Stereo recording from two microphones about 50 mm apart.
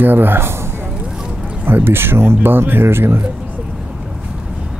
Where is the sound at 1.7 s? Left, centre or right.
Right.